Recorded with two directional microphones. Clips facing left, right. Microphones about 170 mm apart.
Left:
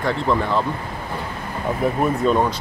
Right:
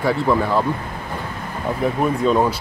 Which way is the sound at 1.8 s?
Centre (ahead or behind).